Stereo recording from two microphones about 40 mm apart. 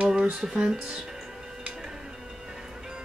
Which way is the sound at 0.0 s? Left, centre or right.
Right.